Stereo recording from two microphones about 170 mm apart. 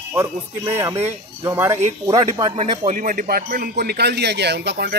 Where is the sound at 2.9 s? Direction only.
55° right (ahead or behind).